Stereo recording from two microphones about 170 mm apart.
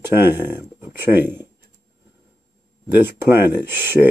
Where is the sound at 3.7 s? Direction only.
10° right (ahead or behind).